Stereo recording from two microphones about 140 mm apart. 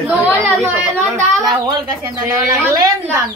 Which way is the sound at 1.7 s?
25° right (ahead or behind).